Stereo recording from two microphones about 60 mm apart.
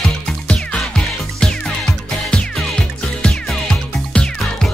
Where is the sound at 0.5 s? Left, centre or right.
Centre.